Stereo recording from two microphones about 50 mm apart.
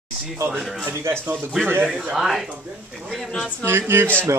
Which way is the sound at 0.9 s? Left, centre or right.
Right.